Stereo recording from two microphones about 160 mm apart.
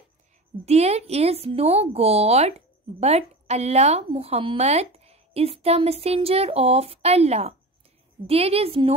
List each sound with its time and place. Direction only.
0.7 s a woman's voice: 40° right (ahead or behind)